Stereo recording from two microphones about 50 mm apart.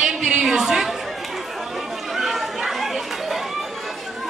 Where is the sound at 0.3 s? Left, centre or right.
Centre.